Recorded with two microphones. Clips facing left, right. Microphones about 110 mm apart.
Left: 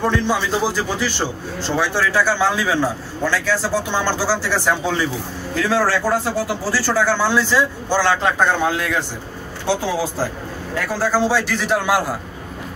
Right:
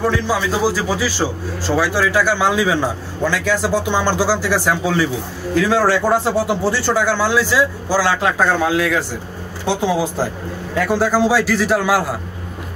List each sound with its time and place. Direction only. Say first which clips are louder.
0.0 s a man's voice: right 1 dB; 5° right (ahead or behind)
5.7 s a man's voice: right 2 dB; 15° right (ahead or behind)
9.7 s speech: even; 20° right (ahead or behind)
10.9 s a man's voice: right 3 dB; 15° right (ahead or behind)